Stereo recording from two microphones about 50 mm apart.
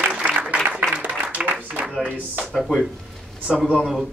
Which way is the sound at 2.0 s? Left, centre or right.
Right.